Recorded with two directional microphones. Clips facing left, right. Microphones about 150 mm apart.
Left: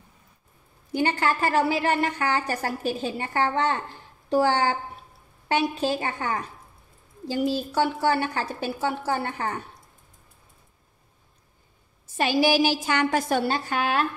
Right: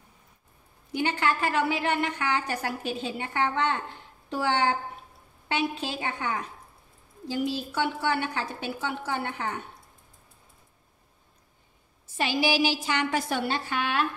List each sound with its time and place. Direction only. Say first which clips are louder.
0.9 s a woman's voice: left 3 dB; 40° left (ahead or behind)
12.2 s a woman's voice: left 4 dB; 45° left (ahead or behind)